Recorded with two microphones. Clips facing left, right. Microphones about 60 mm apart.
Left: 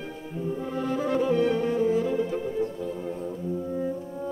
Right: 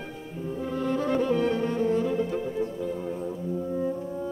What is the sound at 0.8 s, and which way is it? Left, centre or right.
Music, centre.